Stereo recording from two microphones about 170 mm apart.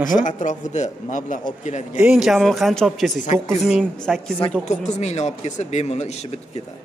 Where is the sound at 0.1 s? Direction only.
45° left (ahead or behind).